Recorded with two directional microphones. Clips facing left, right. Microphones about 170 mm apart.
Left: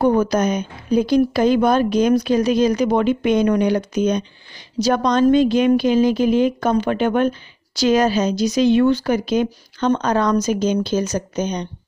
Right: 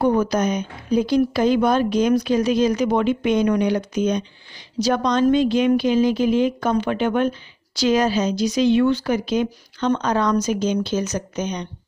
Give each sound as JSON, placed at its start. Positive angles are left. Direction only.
{"t": 0.0, "sound": "a woman's voice", "side_deg": 45}